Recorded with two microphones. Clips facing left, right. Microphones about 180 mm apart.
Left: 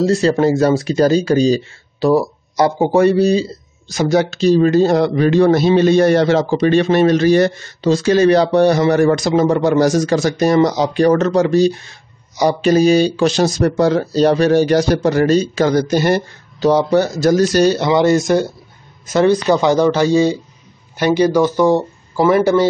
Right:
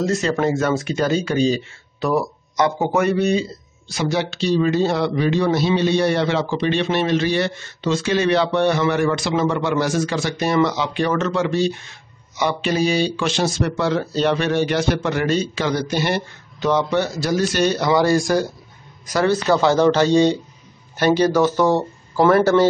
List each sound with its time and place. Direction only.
0.0 s speech: 35° left (ahead or behind)
17.7 s speech: 20° left (ahead or behind)